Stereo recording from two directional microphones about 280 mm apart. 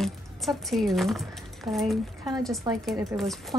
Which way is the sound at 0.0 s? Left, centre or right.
Centre.